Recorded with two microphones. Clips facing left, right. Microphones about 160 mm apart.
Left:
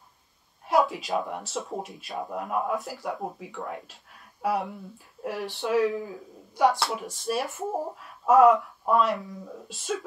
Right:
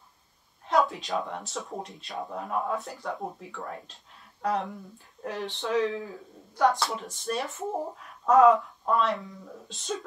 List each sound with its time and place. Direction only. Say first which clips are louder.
0.7 s speech: left 2 dB; centre (ahead or behind)
8.5 s speech: left 1 dB; 20° left (ahead or behind)
8.9 s speech: left 3 dB; centre (ahead or behind)